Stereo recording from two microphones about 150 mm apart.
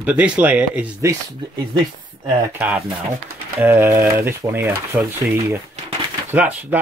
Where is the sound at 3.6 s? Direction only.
15° right (ahead or behind).